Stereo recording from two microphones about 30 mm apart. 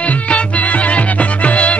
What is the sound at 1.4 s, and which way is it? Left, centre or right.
Music, left.